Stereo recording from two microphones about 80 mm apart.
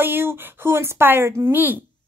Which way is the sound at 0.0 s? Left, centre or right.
Right.